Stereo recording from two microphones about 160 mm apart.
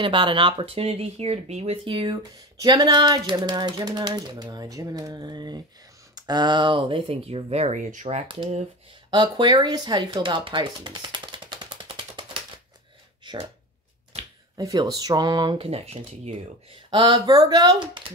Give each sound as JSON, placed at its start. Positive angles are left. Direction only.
{"t": 0.0, "sound": "speech", "side_deg": -30}
{"t": 9.1, "sound": "speech", "side_deg": -25}
{"t": 13.2, "sound": "a sound", "side_deg": -30}
{"t": 14.6, "sound": "speech", "side_deg": -20}
{"t": 16.9, "sound": "speech", "side_deg": -30}